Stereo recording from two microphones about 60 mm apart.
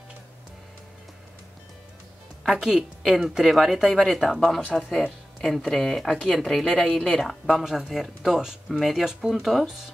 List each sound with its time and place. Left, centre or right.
2.4 s a woman's voice: centre
7.9 s speech: centre